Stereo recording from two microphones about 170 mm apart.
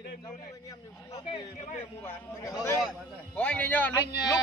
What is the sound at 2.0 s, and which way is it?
A man's voice, 20° left (ahead or behind).